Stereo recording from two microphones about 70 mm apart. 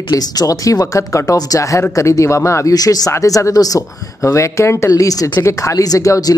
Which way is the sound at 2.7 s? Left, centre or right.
Left.